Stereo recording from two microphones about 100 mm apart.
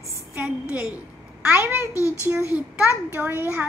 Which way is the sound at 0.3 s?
15° right (ahead or behind).